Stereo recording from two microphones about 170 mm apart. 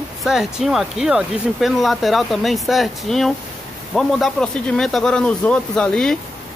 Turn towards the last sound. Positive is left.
turn(degrees=5)  # may be behind; listen again after turning